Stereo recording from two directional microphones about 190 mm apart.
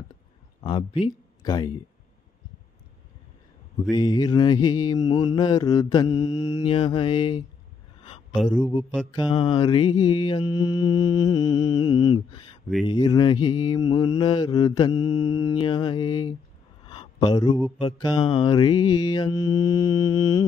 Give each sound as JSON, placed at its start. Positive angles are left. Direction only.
{"t": 0.6, "sound": "speech", "side_deg": 25}
{"t": 3.9, "sound": "mantra", "side_deg": 20}
{"t": 6.6, "sound": "mantra", "side_deg": 30}
{"t": 8.3, "sound": "speech", "side_deg": 5}
{"t": 9.1, "sound": "mantra", "side_deg": 25}
{"t": 16.8, "sound": "a sound", "side_deg": 25}
{"t": 17.7, "sound": "mantra", "side_deg": 20}